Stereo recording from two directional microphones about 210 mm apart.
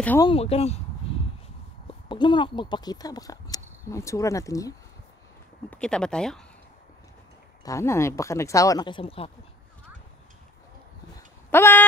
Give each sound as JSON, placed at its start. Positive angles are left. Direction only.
{"t": 0.0, "sound": "speech", "side_deg": 10}
{"t": 0.3, "sound": "speech", "side_deg": 30}
{"t": 2.0, "sound": "speech", "side_deg": 20}
{"t": 5.7, "sound": "speech", "side_deg": 5}
{"t": 7.6, "sound": "speech", "side_deg": 15}
{"t": 11.5, "sound": "a sound", "side_deg": 10}